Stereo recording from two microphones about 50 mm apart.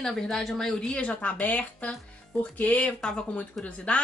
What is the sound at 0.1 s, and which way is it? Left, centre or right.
Speech, centre.